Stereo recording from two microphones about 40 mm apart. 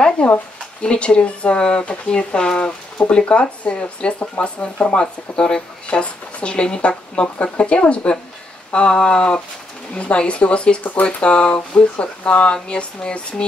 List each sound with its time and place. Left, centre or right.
0.2 s speech: left